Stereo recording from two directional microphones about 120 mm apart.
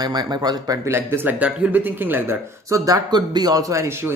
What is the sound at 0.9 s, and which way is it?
Speech, 15° right (ahead or behind).